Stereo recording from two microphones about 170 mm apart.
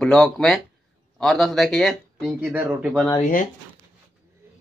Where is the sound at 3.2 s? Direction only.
50° left (ahead or behind).